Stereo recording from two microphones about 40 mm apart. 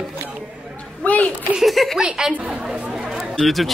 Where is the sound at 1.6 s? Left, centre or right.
Centre.